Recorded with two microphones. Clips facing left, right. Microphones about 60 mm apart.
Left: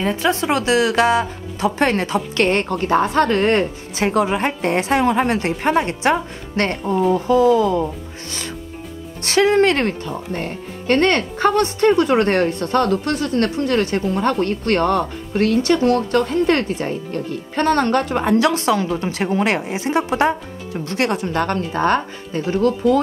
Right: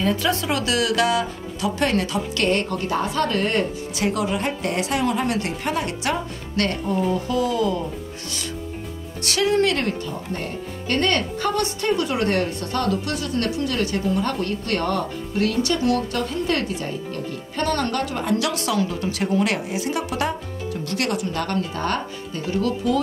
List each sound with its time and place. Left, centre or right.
0.0 s speech: left
9.2 s speech: left